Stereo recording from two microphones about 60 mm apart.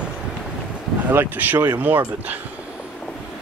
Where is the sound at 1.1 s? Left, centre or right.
Right.